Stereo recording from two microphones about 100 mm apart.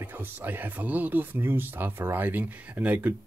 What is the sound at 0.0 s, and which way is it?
Speech, 20° right (ahead or behind).